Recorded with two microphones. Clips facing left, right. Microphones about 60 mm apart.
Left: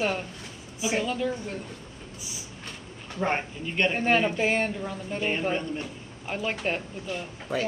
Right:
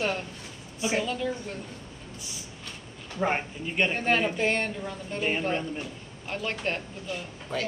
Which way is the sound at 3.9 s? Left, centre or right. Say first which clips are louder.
Left 2 dB; centre.